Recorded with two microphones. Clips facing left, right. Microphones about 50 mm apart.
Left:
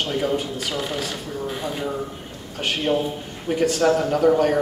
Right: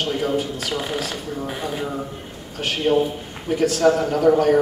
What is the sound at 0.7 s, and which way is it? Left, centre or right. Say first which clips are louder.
Speech: right 2 dB; centre.